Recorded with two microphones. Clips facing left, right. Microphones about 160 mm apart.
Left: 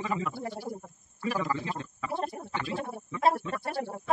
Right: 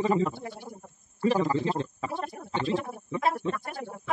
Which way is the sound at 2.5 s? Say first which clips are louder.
Right 10 dB; 30° right (ahead or behind).